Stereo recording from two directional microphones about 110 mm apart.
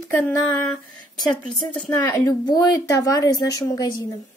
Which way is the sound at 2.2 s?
35° left (ahead or behind).